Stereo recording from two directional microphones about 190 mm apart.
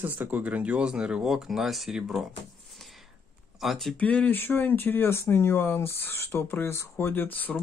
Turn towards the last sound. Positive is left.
turn(degrees=10)  # may be behind; listen again after turning